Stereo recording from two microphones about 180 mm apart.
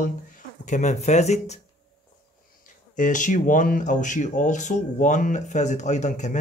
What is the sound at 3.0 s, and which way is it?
Speech, 45° left (ahead or behind).